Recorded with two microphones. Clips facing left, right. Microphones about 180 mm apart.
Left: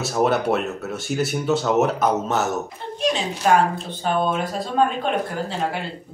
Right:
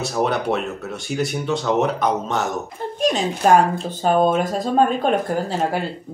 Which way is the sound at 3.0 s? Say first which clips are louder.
Right 3 dB; 45° right (ahead or behind).